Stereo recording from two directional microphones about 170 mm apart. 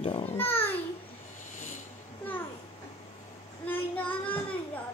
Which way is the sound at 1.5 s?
45° left (ahead or behind).